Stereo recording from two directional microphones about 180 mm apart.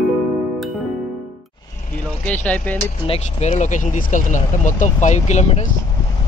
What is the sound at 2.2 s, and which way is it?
Speech, 10° left (ahead or behind).